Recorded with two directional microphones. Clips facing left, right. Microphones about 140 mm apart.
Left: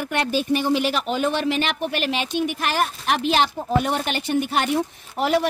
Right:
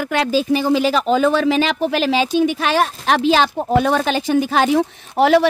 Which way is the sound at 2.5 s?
90° right.